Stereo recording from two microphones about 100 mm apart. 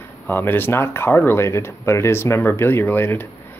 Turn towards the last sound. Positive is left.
turn(degrees=20)  # may be behind; listen again after turning